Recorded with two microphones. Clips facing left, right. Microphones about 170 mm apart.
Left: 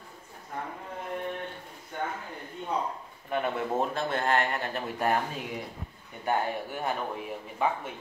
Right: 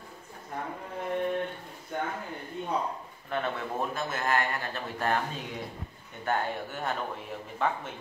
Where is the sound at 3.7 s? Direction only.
30° left (ahead or behind).